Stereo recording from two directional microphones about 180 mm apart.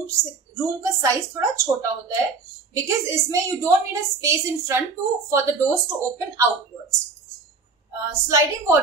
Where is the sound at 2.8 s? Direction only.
15° right (ahead or behind).